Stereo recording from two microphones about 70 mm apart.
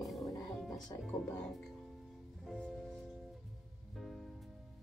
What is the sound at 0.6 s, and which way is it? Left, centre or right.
Speech, centre.